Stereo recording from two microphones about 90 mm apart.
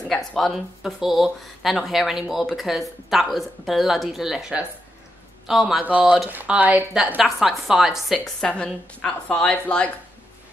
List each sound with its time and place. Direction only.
0.1 s speech: 10° left (ahead or behind)
0.8 s speech: centre (ahead or behind)
5.8 s speech: 15° right (ahead or behind)
7.2 s speech: 5° right (ahead or behind)
8.6 s speech: 10° left (ahead or behind)